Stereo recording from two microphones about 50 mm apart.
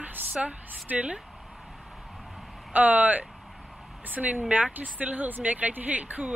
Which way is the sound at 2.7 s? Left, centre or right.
Right.